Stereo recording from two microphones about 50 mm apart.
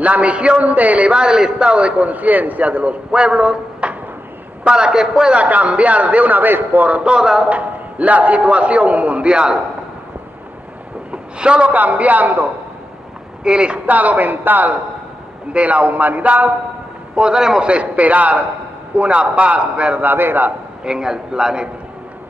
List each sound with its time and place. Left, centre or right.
0.0 s a man's voice: right
5.4 s a man's voice: right
7.2 s a man's voice: centre
7.4 s a man's voice: right
11.1 s a sound: centre
11.7 s a man's voice: right
13.4 s a man's voice: centre
13.8 s a man's voice: right
15.5 s a man's voice: right
17.1 s a man's voice: centre
17.6 s a man's voice: right
20.1 s a man's voice: right
20.8 s a man's voice: centre